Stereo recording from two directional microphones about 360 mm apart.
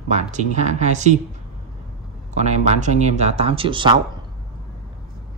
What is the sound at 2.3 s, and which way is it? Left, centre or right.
Speech, centre.